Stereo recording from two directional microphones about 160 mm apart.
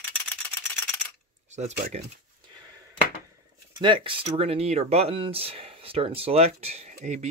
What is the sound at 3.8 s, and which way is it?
Speech, 30° right (ahead or behind).